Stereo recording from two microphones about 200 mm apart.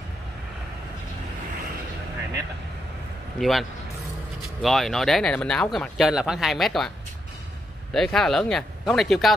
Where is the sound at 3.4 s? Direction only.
Centre (ahead or behind).